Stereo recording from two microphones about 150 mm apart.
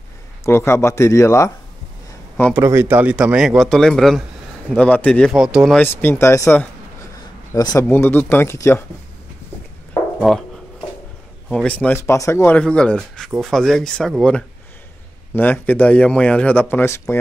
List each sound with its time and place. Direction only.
0.5 s speech: 15° left (ahead or behind)
2.5 s speech: 15° right (ahead or behind); by 5.4 s 5° left (ahead or behind)
5.4 s speech: 5° right (ahead or behind)
5.8 s speech: 10° left (ahead or behind)
10.3 s speech: centre (ahead or behind)
11.4 s speech: 10° left (ahead or behind)